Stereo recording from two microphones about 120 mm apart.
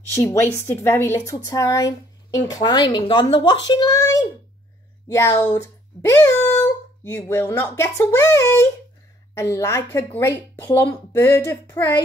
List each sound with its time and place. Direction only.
0.1 s speech: 20° left (ahead or behind); by 3.9 s 35° left (ahead or behind)
3.9 s speech: 25° left (ahead or behind)
5.0 s a sound: 25° left (ahead or behind)
7.2 s speech: 20° left (ahead or behind)